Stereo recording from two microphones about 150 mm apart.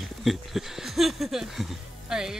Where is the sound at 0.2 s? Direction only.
Centre (ahead or behind).